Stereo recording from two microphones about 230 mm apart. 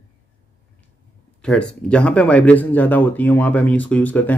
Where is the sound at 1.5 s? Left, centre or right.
Centre.